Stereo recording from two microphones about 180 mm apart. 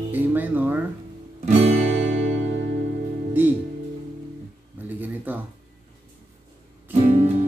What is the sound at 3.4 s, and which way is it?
Music, 10° right (ahead or behind).